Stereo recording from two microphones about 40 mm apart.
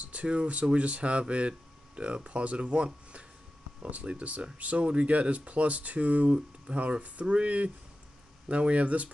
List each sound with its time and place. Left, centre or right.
0.0 s speech: right